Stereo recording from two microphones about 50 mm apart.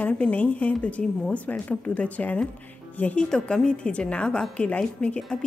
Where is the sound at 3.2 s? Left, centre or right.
Centre.